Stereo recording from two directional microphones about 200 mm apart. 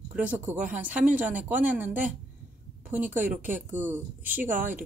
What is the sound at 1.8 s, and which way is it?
Speech, 40° right (ahead or behind).